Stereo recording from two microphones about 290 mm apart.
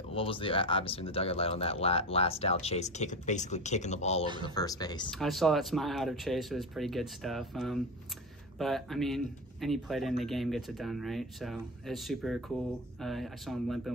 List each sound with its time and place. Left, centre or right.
0.1 s speech: centre
5.1 s speech: centre